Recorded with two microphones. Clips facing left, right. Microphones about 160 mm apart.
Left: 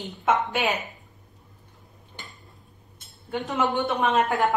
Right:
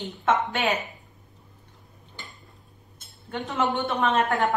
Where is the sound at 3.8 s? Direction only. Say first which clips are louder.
Left 2 dB; centre (ahead or behind).